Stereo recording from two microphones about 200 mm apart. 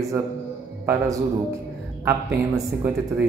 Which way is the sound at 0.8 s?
15° right (ahead or behind).